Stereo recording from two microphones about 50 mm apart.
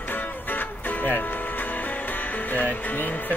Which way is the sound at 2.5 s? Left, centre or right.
Left.